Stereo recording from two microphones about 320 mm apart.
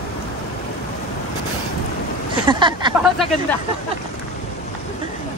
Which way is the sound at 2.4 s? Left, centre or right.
Centre.